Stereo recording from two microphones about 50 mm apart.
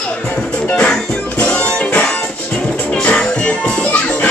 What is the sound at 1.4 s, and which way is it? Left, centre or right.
Music, left.